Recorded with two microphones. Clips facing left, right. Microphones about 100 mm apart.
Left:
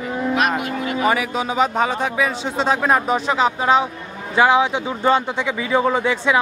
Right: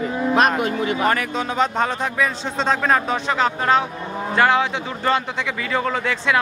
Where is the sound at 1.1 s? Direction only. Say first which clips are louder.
Left 2 dB; 5° left (ahead or behind).